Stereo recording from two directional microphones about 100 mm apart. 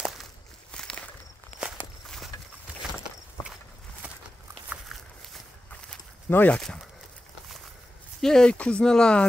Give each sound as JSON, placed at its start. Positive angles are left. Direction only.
{"t": 0.0, "sound": "walk", "side_deg": 0}
{"t": 1.6, "sound": "walk", "side_deg": -10}
{"t": 2.0, "sound": "walk", "side_deg": 5}
{"t": 4.8, "sound": "walk", "side_deg": 0}
{"t": 5.7, "sound": "a sound", "side_deg": 15}
{"t": 6.6, "sound": "speech", "side_deg": 5}
{"t": 8.2, "sound": "speech", "side_deg": 5}